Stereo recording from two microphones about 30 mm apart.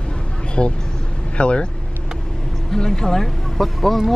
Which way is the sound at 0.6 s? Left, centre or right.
Left.